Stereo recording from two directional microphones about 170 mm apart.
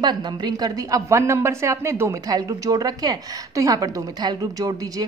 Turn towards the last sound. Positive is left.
turn(degrees=-20)  # may be behind; listen again after turning